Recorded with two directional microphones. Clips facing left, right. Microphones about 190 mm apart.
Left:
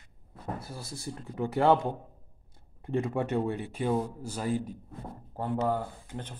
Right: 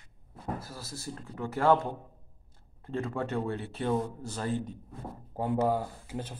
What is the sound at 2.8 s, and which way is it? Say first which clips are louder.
Speech: left 3 dB; 15° left (ahead or behind).